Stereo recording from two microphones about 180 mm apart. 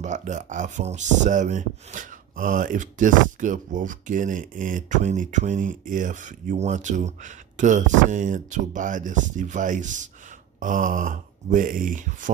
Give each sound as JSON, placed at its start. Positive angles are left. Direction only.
{"t": 0.0, "sound": "speech", "side_deg": -40}